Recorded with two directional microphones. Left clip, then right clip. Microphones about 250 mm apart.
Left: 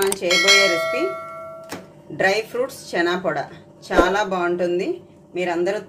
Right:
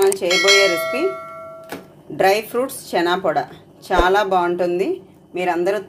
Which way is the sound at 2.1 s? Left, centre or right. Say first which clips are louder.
Right 3 dB; centre.